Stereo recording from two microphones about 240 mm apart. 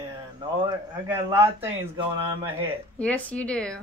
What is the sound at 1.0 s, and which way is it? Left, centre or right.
Speech, centre.